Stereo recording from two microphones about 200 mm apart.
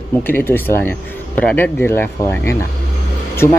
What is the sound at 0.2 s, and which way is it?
Speech, 10° left (ahead or behind).